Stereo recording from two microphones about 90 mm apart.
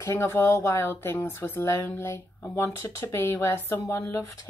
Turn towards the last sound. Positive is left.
turn(degrees=30)  # may be behind; listen again after turning